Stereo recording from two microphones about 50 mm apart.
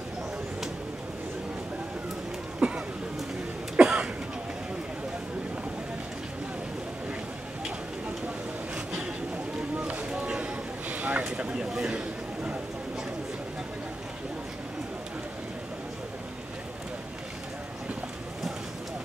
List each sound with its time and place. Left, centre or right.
2.6 s speech: right
3.7 s cough: centre
9.8 s a sound: right